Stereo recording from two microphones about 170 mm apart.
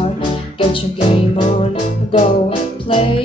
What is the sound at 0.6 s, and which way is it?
Music, 35° left (ahead or behind).